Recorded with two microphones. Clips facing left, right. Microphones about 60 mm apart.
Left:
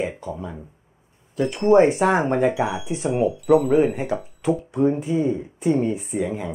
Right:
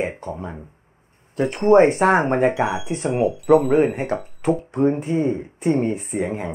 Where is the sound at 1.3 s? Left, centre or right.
Right.